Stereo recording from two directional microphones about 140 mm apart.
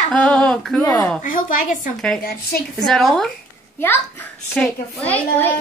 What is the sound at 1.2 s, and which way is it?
Speech, 70° left (ahead or behind).